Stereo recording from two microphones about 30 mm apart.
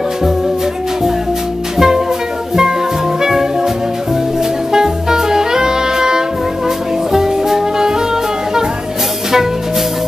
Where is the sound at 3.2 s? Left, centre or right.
Centre.